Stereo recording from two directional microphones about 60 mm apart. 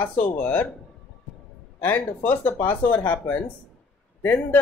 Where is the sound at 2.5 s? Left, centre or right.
Left.